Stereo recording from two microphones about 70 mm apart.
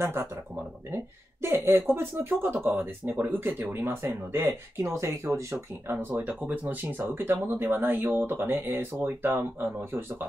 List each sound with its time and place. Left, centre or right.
0.0 s speech: right